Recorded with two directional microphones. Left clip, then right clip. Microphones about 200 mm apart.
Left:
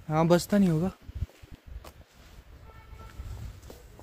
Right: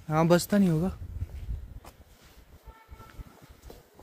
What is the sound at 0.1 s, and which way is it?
Speech, centre (ahead or behind).